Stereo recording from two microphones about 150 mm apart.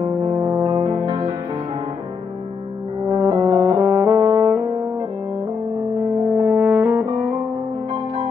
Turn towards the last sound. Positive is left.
turn(degrees=-15)  # may be behind; listen again after turning